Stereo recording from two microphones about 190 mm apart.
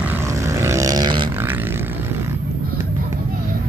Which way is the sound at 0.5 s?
15° right (ahead or behind).